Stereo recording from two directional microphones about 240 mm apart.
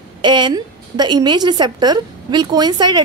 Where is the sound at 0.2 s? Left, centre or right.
Centre.